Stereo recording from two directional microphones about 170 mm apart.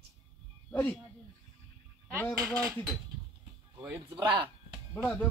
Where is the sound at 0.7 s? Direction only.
10° left (ahead or behind).